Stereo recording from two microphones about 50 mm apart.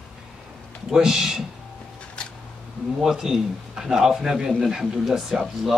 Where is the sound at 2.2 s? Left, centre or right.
Left.